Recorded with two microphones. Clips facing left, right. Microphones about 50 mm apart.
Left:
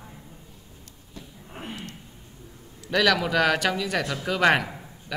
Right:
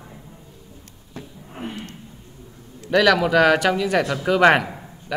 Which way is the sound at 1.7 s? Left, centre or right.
Right.